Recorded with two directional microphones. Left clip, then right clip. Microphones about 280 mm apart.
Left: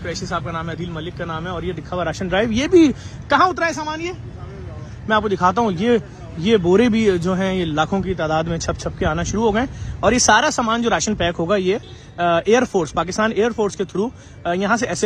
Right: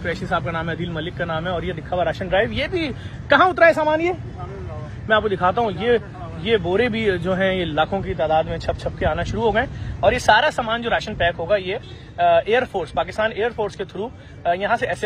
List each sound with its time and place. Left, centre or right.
0.0 s speech: centre
5.0 s speech: left